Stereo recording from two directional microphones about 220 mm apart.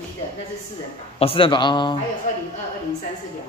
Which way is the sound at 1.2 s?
25° left (ahead or behind).